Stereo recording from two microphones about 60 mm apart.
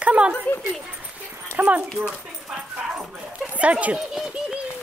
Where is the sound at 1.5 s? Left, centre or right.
Right.